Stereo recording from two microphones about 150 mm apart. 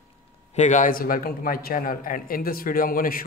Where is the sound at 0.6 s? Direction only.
55° left (ahead or behind).